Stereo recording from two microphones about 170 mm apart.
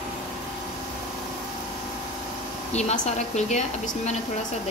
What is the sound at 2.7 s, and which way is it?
Speech, 40° left (ahead or behind).